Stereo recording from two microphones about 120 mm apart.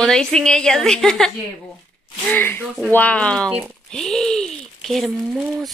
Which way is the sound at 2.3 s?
15° left (ahead or behind).